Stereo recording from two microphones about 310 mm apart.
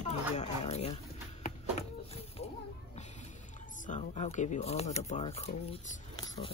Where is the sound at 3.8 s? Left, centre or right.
Left.